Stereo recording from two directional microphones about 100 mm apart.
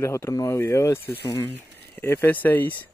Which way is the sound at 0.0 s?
25° left (ahead or behind).